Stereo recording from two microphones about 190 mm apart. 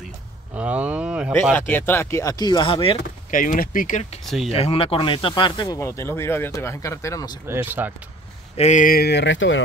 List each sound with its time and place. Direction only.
0.6 s a sound: 5° right (ahead or behind)
1.5 s speech: 10° left (ahead or behind); by 3.0 s 30° left (ahead or behind)
3.3 s speech: 45° left (ahead or behind)
4.5 s speech: 30° left (ahead or behind); by 7.2 s 15° left (ahead or behind)
7.4 s speech: 10° right (ahead or behind)
8.5 s speech: 40° left (ahead or behind); by 9.6 s 75° left (ahead or behind)